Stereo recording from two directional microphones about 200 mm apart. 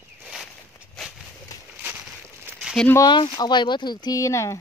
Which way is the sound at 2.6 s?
5° right (ahead or behind).